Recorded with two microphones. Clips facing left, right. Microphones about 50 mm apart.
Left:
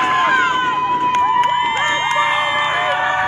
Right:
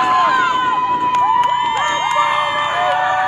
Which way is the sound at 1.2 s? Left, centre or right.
Left.